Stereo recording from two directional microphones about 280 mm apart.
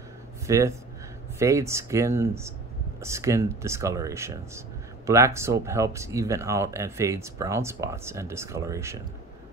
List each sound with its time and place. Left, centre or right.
0.5 s speech: centre